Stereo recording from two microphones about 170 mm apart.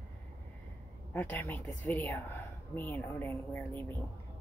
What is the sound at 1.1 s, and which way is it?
A woman's voice, 10° left (ahead or behind).